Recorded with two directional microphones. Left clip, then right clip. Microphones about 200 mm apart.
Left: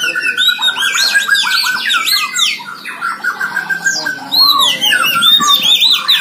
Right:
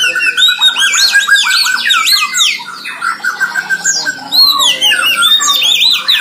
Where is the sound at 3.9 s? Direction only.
20° right (ahead or behind).